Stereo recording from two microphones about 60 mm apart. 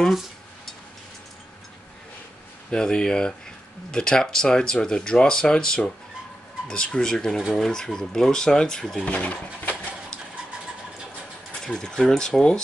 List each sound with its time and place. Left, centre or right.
2.7 s speech: centre
11.6 s speech: centre